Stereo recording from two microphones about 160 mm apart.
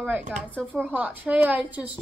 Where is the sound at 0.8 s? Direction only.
10° right (ahead or behind).